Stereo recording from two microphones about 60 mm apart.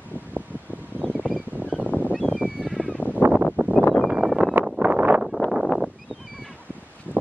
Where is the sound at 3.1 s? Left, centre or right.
Right.